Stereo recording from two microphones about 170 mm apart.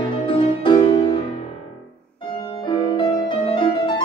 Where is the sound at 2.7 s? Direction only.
30° left (ahead or behind).